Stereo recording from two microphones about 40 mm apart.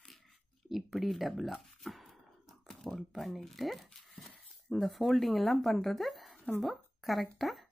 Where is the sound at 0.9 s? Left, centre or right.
Centre.